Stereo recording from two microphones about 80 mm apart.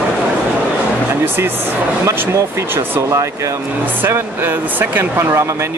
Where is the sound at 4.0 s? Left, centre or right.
Right.